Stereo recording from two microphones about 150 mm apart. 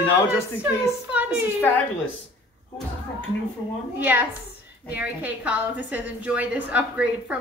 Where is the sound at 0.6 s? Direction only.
10° right (ahead or behind).